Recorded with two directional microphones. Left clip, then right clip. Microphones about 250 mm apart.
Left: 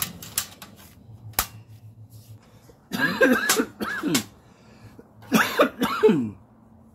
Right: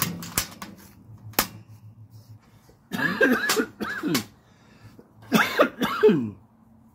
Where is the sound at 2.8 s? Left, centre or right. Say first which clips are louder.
Left 2 dB; right.